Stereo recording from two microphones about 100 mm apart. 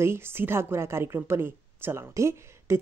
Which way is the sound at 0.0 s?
25° right (ahead or behind).